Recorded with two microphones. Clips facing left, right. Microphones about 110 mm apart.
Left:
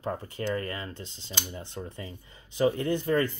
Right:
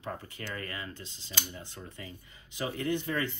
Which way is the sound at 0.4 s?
30° left (ahead or behind).